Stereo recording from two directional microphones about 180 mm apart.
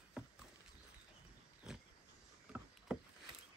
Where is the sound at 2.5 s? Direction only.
5° right (ahead or behind).